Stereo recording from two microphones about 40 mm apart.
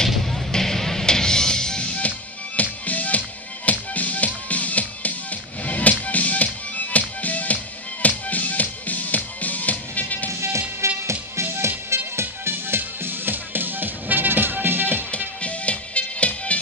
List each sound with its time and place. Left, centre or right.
0.1 s a sound: centre
0.5 s music: centre
2.0 s music: left
11.4 s music: right
12.2 s music: right
15.0 s music: left